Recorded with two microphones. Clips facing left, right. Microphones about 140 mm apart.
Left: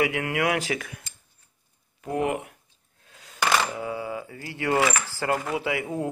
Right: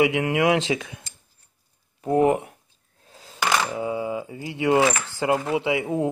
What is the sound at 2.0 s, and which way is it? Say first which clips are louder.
Speech: right 7 dB; 35° right (ahead or behind).